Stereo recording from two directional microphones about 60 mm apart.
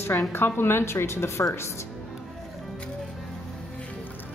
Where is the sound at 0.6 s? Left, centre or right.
Left.